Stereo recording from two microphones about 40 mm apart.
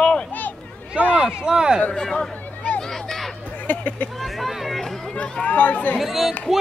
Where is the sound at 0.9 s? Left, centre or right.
Right.